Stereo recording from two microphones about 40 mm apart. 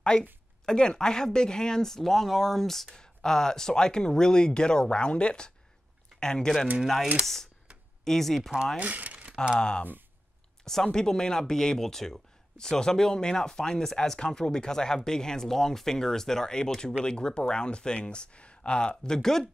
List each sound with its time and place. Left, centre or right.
0.0 s speech: left
8.0 s speech: centre
8.4 s speech: centre
8.7 s speech: right
9.6 s speech: left